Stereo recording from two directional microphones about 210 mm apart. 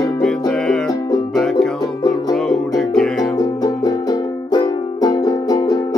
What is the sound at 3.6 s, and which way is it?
Music, 20° left (ahead or behind).